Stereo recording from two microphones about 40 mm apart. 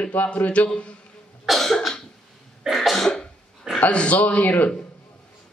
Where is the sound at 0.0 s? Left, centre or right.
Left.